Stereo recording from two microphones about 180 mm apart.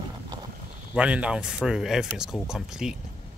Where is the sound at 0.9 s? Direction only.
5° right (ahead or behind).